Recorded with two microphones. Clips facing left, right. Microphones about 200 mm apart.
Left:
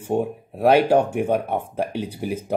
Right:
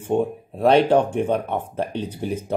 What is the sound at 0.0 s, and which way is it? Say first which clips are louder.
Speech: right 1 dB; 10° left (ahead or behind).